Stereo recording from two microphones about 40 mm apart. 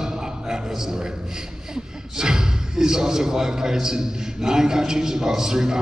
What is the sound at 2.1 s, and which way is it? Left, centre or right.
Speech, centre.